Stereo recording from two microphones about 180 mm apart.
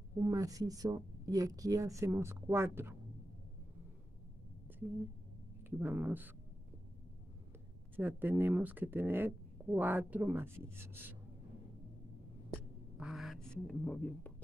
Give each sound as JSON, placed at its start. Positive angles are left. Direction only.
{"t": 0.2, "sound": "speech", "side_deg": -20}
{"t": 5.7, "sound": "speech", "side_deg": -10}
{"t": 7.9, "sound": "speech", "side_deg": -10}
{"t": 12.9, "sound": "speech", "side_deg": 0}